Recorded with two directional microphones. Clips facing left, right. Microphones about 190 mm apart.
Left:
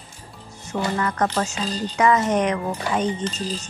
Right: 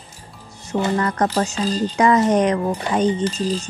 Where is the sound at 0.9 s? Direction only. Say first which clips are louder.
Right 2 dB; 35° right (ahead or behind).